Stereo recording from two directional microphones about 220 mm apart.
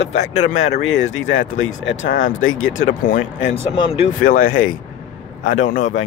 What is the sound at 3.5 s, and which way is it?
Speech, 25° left (ahead or behind).